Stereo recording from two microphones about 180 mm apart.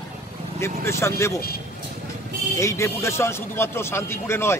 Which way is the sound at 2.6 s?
15° left (ahead or behind).